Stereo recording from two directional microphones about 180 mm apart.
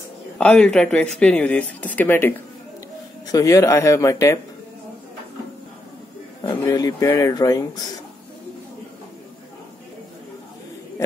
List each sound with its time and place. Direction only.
0.4 s a man's voice: 5° left (ahead or behind)
6.4 s speech: 20° left (ahead or behind)